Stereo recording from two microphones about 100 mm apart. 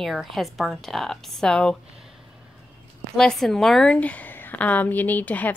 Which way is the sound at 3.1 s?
5° left (ahead or behind).